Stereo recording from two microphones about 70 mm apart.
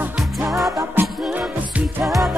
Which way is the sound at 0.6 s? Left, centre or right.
Right.